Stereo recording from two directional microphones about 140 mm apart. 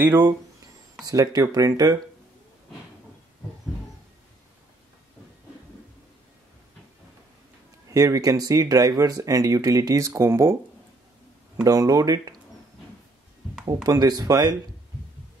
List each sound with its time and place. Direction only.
0.0 s speech: 25° right (ahead or behind)
7.9 s speech: 25° right (ahead or behind)
11.6 s speech: 25° right (ahead or behind)
13.8 s speech: 30° right (ahead or behind)